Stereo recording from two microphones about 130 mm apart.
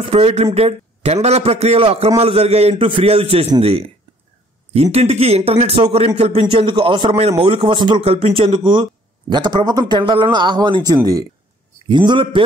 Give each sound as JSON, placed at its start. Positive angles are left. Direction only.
{"t": 0.0, "sound": "a man's voice", "side_deg": -50}
{"t": 4.9, "sound": "a man's voice", "side_deg": -50}
{"t": 6.5, "sound": "a man's voice", "side_deg": -40}